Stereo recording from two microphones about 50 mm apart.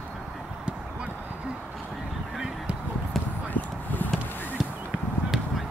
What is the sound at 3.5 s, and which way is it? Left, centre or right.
Clip-clop, left.